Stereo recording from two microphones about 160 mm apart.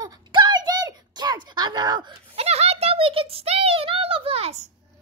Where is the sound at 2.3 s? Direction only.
40° right (ahead or behind).